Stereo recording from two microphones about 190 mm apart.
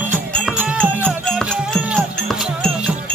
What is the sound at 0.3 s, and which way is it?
Music, 5° left (ahead or behind).